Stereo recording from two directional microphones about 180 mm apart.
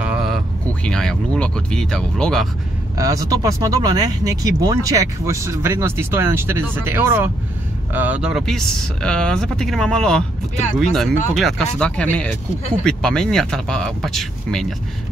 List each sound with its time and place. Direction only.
0.0 s speech: 5° right (ahead or behind)
3.0 s speech: 20° right (ahead or behind); by 14.7 s centre (ahead or behind)